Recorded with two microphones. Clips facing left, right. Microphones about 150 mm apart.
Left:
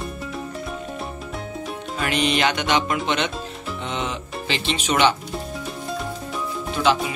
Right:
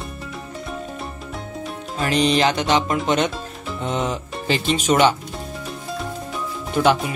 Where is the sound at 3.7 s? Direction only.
40° right (ahead or behind).